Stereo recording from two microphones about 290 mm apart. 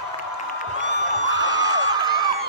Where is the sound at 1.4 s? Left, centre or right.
Centre.